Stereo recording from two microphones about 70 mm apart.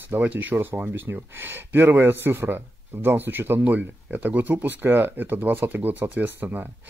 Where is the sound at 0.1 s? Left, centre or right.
Right.